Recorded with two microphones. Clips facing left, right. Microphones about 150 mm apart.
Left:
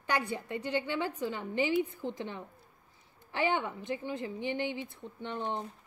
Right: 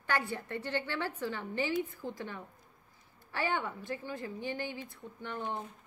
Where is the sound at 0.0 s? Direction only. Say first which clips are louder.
Left 1 dB; 20° left (ahead or behind).